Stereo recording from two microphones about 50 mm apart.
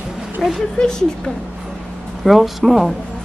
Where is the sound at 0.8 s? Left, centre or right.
Centre.